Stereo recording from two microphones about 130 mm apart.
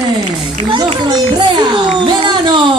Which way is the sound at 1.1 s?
35° right (ahead or behind).